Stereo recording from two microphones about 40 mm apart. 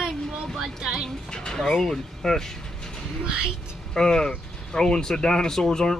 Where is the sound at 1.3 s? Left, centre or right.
Left.